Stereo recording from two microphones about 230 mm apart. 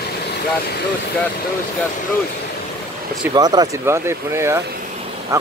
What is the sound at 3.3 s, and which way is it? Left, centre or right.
Speech, centre.